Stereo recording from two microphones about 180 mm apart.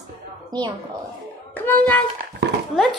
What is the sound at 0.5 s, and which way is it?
Speech, 25° right (ahead or behind).